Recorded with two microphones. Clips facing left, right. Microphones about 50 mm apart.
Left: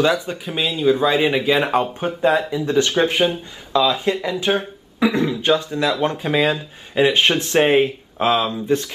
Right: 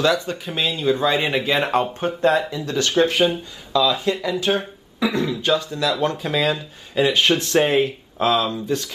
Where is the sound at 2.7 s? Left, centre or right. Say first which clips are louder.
Left 1 dB; centre.